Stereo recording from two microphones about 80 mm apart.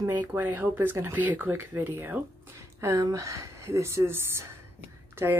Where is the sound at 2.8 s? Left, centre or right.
Right.